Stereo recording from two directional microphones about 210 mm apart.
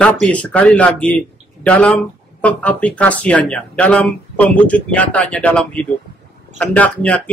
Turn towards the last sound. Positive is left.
turn(degrees=5)  # may be behind; listen again after turning